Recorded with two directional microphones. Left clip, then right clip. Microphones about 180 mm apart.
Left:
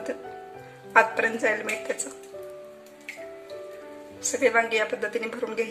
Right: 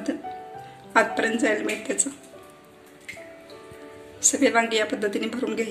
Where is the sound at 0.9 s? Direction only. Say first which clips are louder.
Left 1 dB; 50° left (ahead or behind).